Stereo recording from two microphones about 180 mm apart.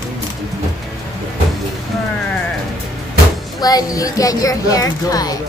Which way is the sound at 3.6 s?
20° left (ahead or behind).